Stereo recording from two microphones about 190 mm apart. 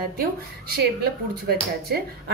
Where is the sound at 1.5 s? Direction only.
55° right (ahead or behind).